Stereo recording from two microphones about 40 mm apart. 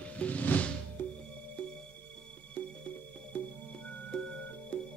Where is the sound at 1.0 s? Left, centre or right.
Left.